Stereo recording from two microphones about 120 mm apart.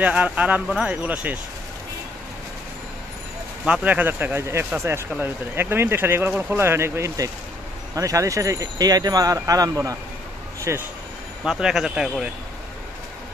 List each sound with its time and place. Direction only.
0.0 s speech: 10° right (ahead or behind)
3.6 s speech: 10° right (ahead or behind)
11.4 s speech: 5° right (ahead or behind)